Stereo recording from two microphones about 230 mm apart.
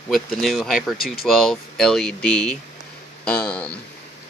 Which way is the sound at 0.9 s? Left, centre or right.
Left.